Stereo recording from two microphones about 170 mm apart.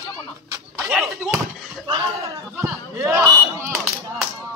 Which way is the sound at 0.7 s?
Centre (ahead or behind).